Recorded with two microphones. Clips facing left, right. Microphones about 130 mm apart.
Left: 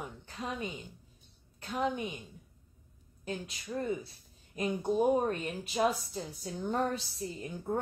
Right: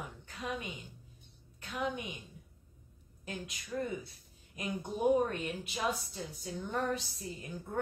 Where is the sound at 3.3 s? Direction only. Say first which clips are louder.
Left 3 dB; 30° left (ahead or behind).